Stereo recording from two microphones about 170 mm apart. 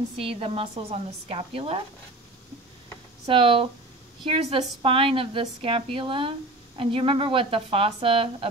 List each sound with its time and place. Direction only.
0.2 s a woman's voice: 35° right (ahead or behind)
3.3 s a woman's voice: 30° right (ahead or behind)